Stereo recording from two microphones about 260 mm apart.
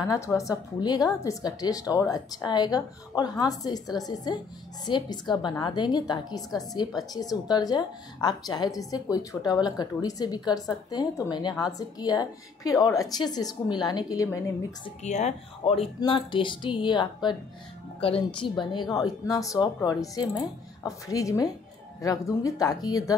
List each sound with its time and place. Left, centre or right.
0.0 s a woman's voice: centre
15.0 s a woman's voice: left